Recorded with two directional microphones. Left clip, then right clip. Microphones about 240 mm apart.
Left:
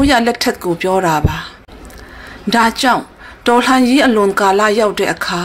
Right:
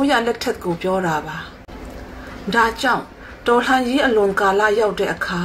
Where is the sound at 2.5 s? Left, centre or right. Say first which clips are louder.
Left 5 dB; left.